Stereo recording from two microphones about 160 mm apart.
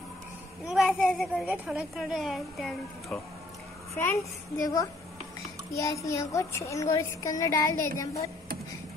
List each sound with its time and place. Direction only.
0.7 s a woman's voice: 5° right (ahead or behind)
3.9 s a woman's voice: 15° left (ahead or behind)